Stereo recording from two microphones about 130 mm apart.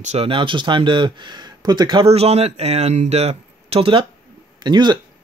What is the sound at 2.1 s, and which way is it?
Speech, 55° right (ahead or behind).